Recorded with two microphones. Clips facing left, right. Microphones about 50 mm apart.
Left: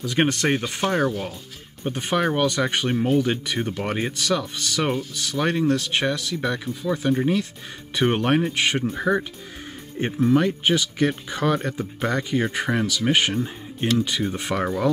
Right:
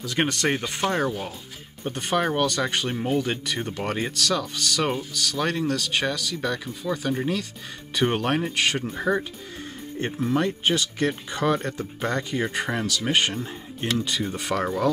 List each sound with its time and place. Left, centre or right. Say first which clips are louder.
0.0 s speech: left 3 dB; left
0.6 s speech: left 2 dB; centre
1.9 s speech: left 2 dB; left; by 9.2 s centre
9.9 s speech: left 5 dB; centre